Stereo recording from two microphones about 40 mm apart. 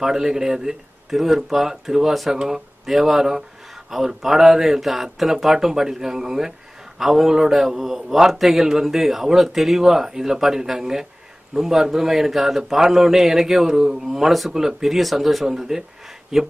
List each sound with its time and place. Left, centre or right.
0.0 s a man's voice: centre